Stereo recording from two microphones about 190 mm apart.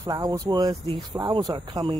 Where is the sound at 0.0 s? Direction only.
20° right (ahead or behind).